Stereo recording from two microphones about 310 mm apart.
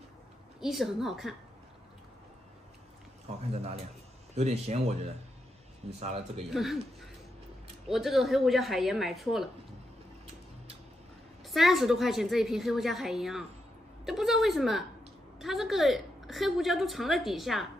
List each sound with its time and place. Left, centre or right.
0.6 s a woman's voice: centre
4.4 s speech: right
6.5 s a woman's voice: centre
7.9 s a woman's voice: centre
11.4 s a woman's voice: centre